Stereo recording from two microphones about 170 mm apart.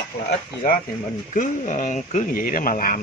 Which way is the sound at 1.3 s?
45° left (ahead or behind).